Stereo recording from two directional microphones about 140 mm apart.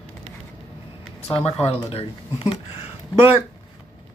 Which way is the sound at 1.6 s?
45° left (ahead or behind).